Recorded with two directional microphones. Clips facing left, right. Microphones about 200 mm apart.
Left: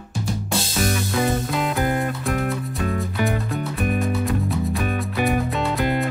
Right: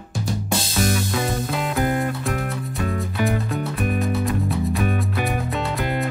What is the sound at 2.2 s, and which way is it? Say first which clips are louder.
Music: left 2 dB; centre (ahead or behind).